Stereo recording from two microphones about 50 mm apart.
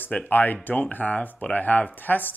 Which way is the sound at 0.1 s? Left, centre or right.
Left.